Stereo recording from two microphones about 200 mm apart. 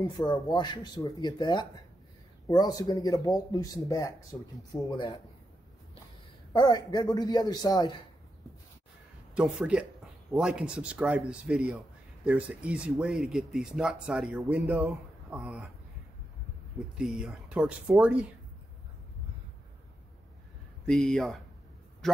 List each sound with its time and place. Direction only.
0.3 s speech: 20° left (ahead or behind)
4.3 s speech: 5° left (ahead or behind)
4.8 s speech: 25° left (ahead or behind)
6.5 s speech: 20° left (ahead or behind)
9.3 s speech: 5° right (ahead or behind)
16.9 s speech: 5° right (ahead or behind)
20.8 s speech: centre (ahead or behind)
22.0 s a sound: centre (ahead or behind)